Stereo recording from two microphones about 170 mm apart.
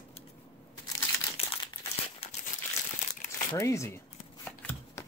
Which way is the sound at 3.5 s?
15° left (ahead or behind).